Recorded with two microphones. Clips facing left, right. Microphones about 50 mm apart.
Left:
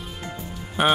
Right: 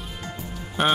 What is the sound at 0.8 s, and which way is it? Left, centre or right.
Speech, centre.